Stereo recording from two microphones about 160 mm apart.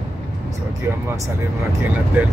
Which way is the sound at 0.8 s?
15° right (ahead or behind).